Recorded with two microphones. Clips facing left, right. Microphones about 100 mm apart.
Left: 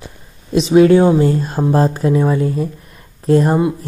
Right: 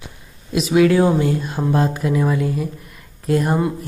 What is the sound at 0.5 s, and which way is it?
Speech, 30° left (ahead or behind).